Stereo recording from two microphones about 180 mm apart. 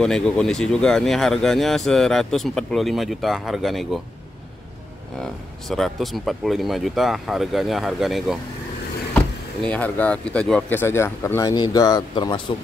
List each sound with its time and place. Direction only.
0.0 s speech: 5° left (ahead or behind)
5.2 s speech: centre (ahead or behind); by 12.4 s 25° left (ahead or behind)